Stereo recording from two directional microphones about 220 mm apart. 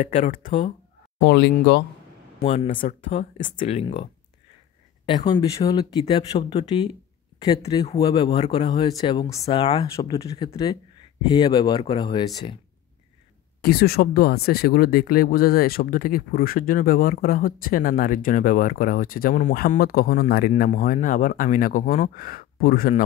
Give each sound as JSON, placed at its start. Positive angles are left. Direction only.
{"t": 0.0, "sound": "speech", "side_deg": 35}
{"t": 1.2, "sound": "speech", "side_deg": 55}
{"t": 2.4, "sound": "speech", "side_deg": 25}
{"t": 13.6, "sound": "speech", "side_deg": 45}